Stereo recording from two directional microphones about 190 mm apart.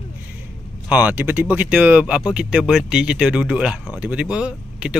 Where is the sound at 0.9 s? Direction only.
10° right (ahead or behind).